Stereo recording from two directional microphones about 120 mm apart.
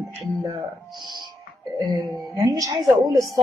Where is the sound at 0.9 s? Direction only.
40° right (ahead or behind).